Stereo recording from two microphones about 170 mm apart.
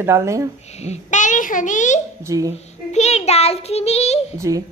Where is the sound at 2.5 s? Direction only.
40° left (ahead or behind).